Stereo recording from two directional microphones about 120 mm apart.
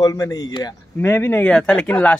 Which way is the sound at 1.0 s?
15° left (ahead or behind).